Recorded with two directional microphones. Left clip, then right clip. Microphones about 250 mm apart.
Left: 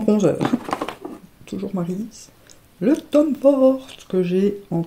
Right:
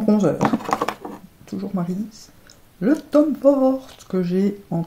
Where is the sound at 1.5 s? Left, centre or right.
Left.